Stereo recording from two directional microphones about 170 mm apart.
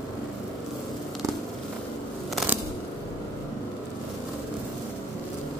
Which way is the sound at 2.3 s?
10° right (ahead or behind).